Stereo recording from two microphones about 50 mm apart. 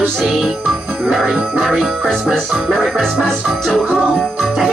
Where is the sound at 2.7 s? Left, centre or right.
Centre.